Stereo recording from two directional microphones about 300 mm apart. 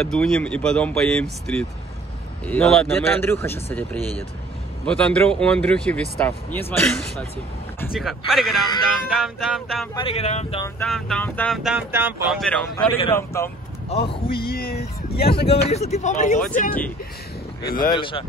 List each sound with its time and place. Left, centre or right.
0.0 s speech: centre
4.8 s speech: centre
9.9 s speech: centre
10.8 s speech: centre
12.7 s speech: centre
14.3 s speech: left
15.3 s speech: centre
17.6 s speech: left
17.8 s speech: centre